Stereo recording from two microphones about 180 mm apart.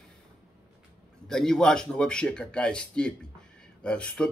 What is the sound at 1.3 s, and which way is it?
Speech, 5° left (ahead or behind).